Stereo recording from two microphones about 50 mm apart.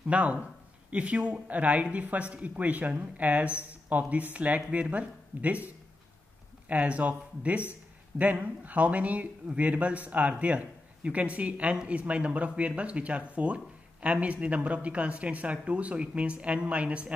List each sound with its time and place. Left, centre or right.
0.1 s a man's voice: right
6.7 s a man's voice: right